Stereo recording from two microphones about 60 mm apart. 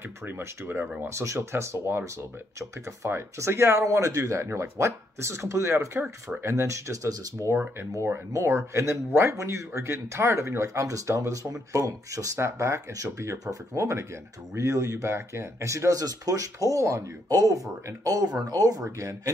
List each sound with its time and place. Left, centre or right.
0.2 s speech: right
1.0 s speech: right
3.8 s speech: right
12.4 s speech: right
18.9 s speech: right